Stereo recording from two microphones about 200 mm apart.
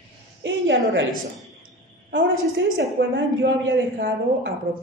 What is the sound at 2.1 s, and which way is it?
A woman's voice, 65° right (ahead or behind).